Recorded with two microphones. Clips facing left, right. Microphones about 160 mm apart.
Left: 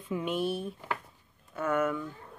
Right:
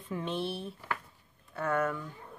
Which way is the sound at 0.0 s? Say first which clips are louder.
Left 3 dB; 10° left (ahead or behind).